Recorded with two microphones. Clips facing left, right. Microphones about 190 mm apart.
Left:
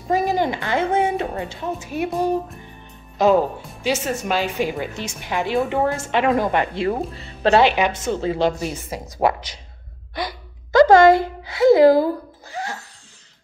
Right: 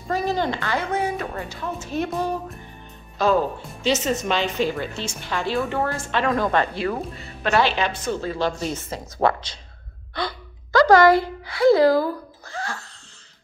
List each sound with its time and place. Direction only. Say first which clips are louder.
0.1 s a woman's voice: left 3 dB; 15° left (ahead or behind)
3.2 s a woman's voice: left 4 dB; 20° left (ahead or behind)
8.5 s a woman's voice: left 1 dB; 10° left (ahead or behind)
10.1 s a sound: even; 20° left (ahead or behind)